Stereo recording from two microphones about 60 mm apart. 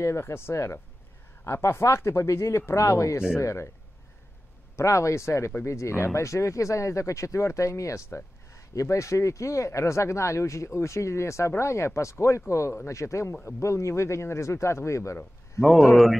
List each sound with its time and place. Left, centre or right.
0.0 s speech: left
4.7 s speech: left
13.6 s speech: left
15.9 s speech: centre